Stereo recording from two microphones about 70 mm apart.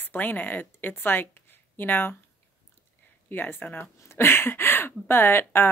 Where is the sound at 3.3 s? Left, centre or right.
Left.